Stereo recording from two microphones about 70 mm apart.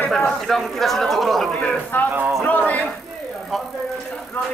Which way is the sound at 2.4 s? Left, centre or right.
Left.